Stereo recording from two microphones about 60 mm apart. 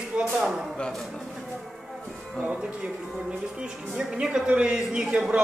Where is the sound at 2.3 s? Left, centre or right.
Right.